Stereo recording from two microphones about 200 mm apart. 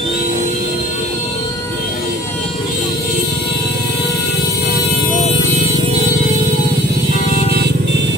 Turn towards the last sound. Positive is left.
turn(degrees=30)  # may be behind; listen again after turning